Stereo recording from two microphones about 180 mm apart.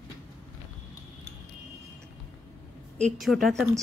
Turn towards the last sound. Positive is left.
turn(degrees=0)  # may be behind; listen again after turning